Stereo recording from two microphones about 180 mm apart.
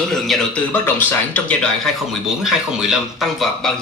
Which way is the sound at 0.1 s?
Centre (ahead or behind).